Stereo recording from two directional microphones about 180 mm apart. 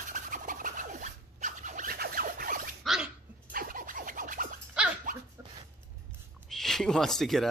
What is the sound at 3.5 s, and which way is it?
Scratch, 50° right (ahead or behind).